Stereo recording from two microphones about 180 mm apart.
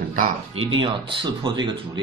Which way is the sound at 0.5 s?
30° right (ahead or behind).